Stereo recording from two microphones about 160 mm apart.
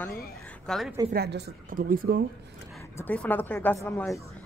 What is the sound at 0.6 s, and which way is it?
Speech, centre (ahead or behind).